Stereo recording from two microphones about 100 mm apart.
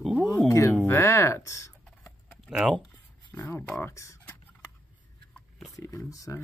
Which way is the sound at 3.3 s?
20° left (ahead or behind).